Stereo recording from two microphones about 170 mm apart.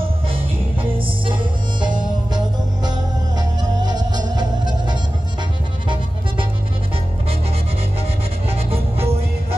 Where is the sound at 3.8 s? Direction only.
25° right (ahead or behind).